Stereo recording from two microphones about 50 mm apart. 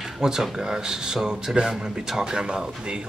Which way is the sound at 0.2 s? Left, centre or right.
Centre.